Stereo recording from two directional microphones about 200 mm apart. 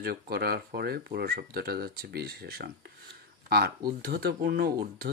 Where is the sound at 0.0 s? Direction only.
50° right (ahead or behind).